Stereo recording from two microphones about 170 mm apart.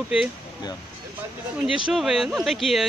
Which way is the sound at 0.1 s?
5° right (ahead or behind).